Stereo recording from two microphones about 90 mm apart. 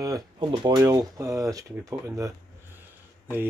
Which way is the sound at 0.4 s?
55° right (ahead or behind).